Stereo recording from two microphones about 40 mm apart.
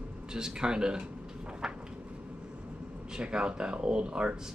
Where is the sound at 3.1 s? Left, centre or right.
Right.